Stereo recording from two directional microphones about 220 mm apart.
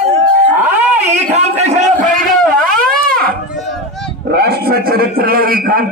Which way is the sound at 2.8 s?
40° right (ahead or behind).